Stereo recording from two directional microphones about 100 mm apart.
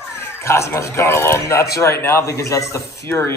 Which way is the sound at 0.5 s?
30° left (ahead or behind).